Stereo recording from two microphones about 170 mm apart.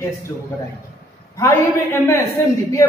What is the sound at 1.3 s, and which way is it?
Speech, 15° left (ahead or behind).